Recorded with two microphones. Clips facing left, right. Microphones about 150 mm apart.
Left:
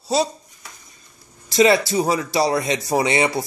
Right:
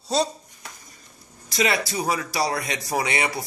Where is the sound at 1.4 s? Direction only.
30° left (ahead or behind).